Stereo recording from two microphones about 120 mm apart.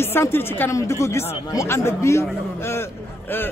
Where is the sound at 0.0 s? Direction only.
20° left (ahead or behind).